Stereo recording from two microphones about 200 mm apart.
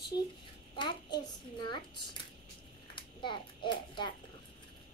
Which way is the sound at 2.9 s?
25° left (ahead or behind).